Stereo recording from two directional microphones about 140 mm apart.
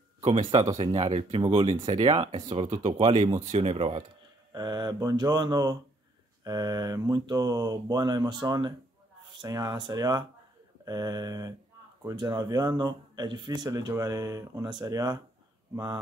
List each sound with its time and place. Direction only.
0.2 s speech: 40° right (ahead or behind)
1.0 s speech: 40° right (ahead or behind)
3.3 s speech: 55° right (ahead or behind)
4.5 s speech: 30° right (ahead or behind)